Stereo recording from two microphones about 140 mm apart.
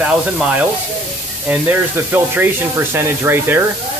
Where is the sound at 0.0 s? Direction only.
5° right (ahead or behind).